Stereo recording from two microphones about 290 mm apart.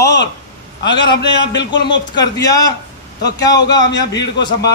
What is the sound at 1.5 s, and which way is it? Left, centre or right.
Speech, left.